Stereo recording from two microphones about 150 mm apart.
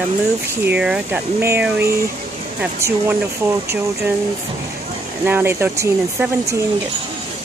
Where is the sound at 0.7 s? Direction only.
5° right (ahead or behind).